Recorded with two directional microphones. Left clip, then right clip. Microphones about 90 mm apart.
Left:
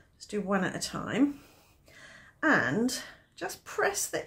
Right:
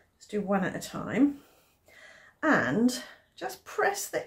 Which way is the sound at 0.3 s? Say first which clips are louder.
Right 1 dB; 60° left (ahead or behind).